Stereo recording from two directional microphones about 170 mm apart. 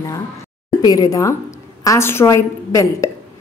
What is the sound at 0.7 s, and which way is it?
A woman's voice, 20° left (ahead or behind).